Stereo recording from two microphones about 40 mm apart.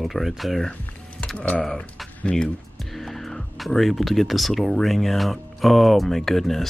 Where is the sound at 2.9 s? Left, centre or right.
Centre.